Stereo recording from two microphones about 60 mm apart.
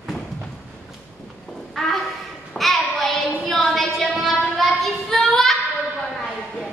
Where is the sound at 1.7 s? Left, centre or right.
Centre.